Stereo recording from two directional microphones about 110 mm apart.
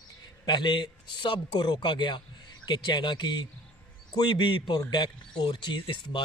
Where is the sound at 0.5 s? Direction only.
45° left (ahead or behind).